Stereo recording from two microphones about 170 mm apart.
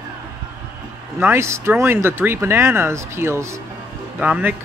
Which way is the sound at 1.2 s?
15° right (ahead or behind).